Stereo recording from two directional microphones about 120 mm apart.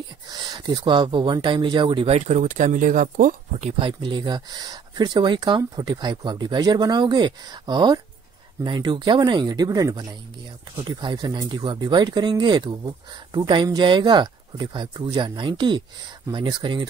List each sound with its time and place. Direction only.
0.3 s speech: 35° right (ahead or behind)
2.0 s speech: 65° right (ahead or behind); by 3.7 s 90° right
3.8 s speech: 40° right (ahead or behind)
10.9 s speech: 40° right (ahead or behind)